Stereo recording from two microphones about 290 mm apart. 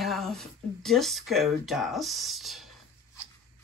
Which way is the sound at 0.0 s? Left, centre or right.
Centre.